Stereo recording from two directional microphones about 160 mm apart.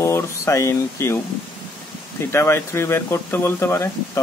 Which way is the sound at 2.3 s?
15° left (ahead or behind).